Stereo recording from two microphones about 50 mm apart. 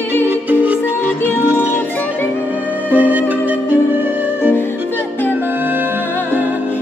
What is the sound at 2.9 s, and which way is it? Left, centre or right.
Music, right.